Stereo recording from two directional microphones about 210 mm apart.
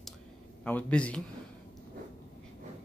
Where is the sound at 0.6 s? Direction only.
5° left (ahead or behind).